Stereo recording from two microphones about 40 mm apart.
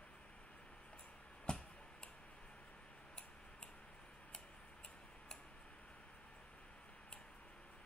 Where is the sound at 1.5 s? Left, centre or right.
Left.